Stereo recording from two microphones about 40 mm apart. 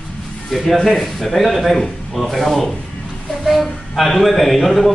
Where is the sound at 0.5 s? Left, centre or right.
Centre.